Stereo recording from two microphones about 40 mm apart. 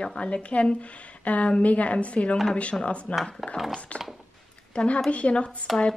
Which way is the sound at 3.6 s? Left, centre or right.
Centre.